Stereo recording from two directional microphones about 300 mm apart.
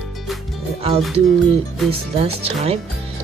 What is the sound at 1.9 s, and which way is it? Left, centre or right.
Speech, centre.